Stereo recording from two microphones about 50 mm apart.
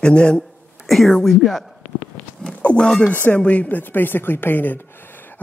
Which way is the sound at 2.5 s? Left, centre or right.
Left.